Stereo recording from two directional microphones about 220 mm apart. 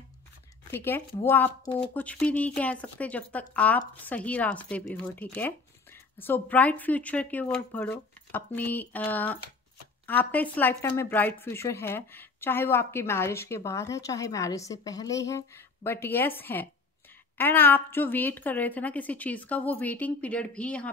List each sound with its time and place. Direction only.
0.7 s a woman's voice: 10° left (ahead or behind)